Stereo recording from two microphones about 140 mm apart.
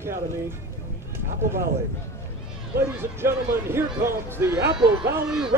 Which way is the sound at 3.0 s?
15° right (ahead or behind).